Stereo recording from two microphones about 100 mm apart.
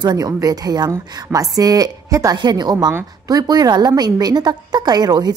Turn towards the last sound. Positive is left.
turn(degrees=-40)  # may be behind; listen again after turning